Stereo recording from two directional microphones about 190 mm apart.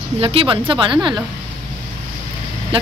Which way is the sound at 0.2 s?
30° right (ahead or behind).